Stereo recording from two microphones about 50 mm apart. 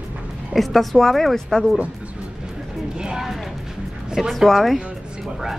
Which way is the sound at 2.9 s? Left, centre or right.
Centre.